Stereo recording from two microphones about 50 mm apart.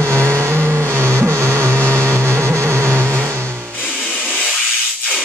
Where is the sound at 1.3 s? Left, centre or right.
Right.